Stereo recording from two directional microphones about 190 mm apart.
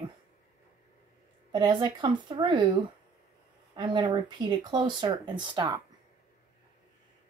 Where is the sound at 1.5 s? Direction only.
20° right (ahead or behind).